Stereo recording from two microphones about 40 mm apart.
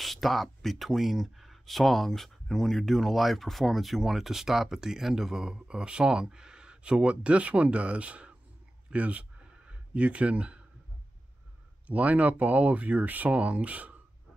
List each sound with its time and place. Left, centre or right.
0.0 s speech: centre; by 8.4 s right
8.9 s a sound: right
11.9 s speech: right